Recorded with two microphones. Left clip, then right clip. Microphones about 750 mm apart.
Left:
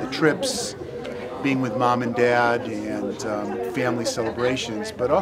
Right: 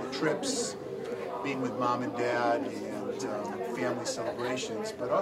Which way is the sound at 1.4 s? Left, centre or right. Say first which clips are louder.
Left 10 dB; left.